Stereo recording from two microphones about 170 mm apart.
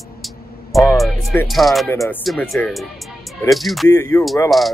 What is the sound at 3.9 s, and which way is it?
Speech, 15° left (ahead or behind).